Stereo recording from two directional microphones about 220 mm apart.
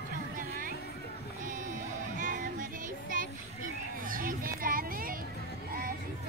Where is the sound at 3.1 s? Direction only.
40° right (ahead or behind).